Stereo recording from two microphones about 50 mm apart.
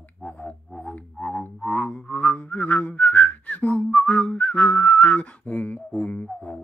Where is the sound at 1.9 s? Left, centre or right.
Left.